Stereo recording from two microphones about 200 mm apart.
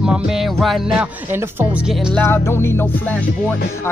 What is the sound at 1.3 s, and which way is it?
Speech, 10° right (ahead or behind).